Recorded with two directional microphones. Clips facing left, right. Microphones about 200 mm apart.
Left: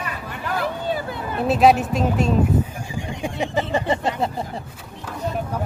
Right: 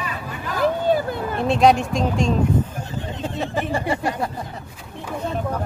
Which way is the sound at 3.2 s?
15° left (ahead or behind).